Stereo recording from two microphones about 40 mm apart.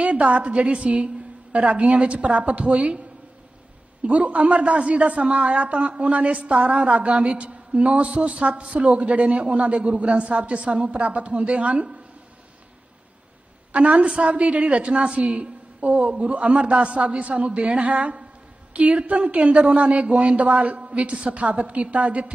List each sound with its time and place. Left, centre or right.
0.0 s a woman's voice: right
4.0 s a woman's voice: right
13.7 s a woman's voice: right